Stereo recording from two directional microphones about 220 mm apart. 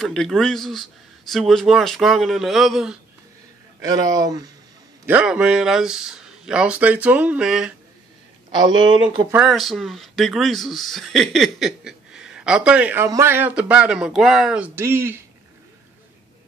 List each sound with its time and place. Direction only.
0.0 s speech: centre (ahead or behind)
3.8 s speech: 15° right (ahead or behind)
5.0 s speech: 5° right (ahead or behind)
8.6 s speech: 20° right (ahead or behind)
9.3 s speech: centre (ahead or behind)